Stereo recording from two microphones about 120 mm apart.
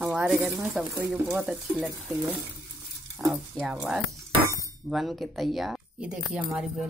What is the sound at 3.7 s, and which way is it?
Speech, 10° right (ahead or behind).